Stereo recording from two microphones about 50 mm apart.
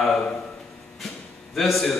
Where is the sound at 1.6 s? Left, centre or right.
Centre.